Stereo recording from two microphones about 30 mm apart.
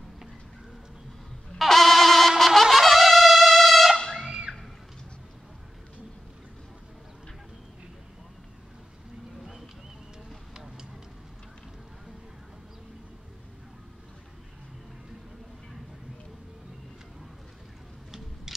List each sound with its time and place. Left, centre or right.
1.7 s trumpet: centre
4.3 s music: right